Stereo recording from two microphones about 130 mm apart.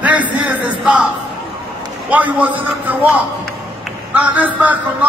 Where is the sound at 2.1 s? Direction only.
10° right (ahead or behind).